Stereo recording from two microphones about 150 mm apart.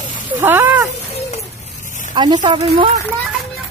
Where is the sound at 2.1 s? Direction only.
30° right (ahead or behind).